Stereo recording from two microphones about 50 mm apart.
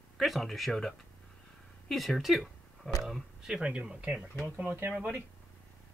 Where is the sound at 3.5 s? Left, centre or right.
Centre.